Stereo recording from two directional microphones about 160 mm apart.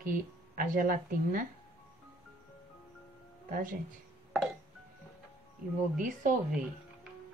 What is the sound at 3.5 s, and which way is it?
Speech, 60° right (ahead or behind).